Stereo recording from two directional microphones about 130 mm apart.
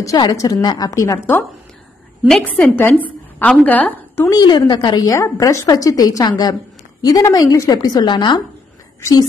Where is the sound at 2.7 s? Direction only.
15° left (ahead or behind).